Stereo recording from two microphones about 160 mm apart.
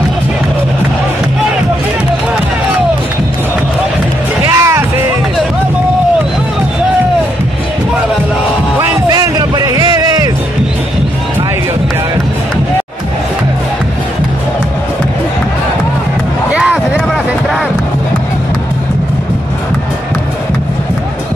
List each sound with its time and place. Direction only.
4.5 s music: 20° right (ahead or behind)
9.1 s music: 25° right (ahead or behind)
16.5 s a sound: 5° right (ahead or behind)